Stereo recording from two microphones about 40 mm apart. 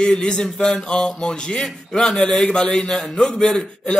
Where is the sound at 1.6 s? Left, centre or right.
Centre.